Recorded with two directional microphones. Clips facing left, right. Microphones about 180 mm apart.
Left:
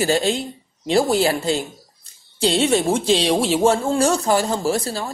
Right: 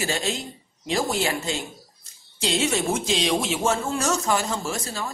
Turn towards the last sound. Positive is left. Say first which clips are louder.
# left 8 dB
turn(degrees=35)  # may be behind; listen again after turning